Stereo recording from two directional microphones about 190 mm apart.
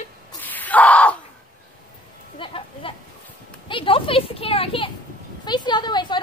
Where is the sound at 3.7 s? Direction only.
30° left (ahead or behind).